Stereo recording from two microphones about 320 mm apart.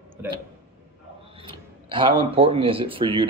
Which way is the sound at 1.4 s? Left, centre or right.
Centre.